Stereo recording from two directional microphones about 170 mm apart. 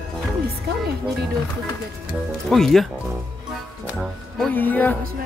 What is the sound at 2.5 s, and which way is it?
Speech, centre (ahead or behind).